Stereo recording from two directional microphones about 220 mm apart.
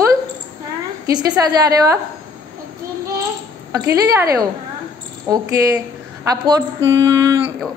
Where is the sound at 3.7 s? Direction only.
15° right (ahead or behind).